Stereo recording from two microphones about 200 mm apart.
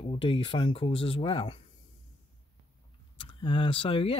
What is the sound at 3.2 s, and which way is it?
Speech, 25° left (ahead or behind).